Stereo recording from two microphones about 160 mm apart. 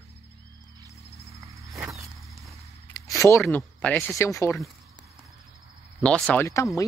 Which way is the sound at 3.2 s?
15° left (ahead or behind).